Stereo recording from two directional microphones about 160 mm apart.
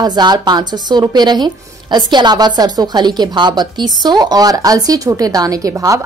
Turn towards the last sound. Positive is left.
turn(degrees=-20)  # may be behind; listen again after turning